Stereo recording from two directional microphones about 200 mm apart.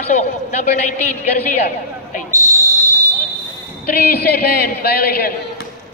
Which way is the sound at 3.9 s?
50° left (ahead or behind).